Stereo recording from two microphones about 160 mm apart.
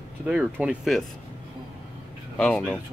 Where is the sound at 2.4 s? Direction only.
5° left (ahead or behind).